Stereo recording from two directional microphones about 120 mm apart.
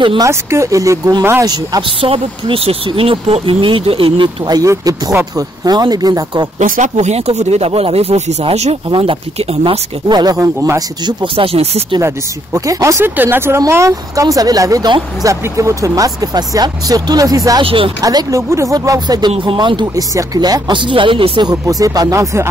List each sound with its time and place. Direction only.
0.2 s speech: 25° right (ahead or behind)
1.8 s speech: 50° right (ahead or behind)
6.6 s speech: 80° right; by 8.7 s 65° right (ahead or behind)
8.8 s speech: 45° right (ahead or behind)
9.7 s speech: 35° right (ahead or behind)
10.4 s speech: 25° right (ahead or behind)
11.1 s speech: 50° right (ahead or behind)
12.5 s speech: 25° right (ahead or behind)
17.6 s speech: 50° right (ahead or behind)
18.0 s speech: 30° right (ahead or behind)